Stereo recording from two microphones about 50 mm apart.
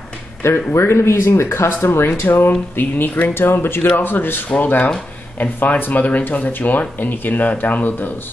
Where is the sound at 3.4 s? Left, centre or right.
Left.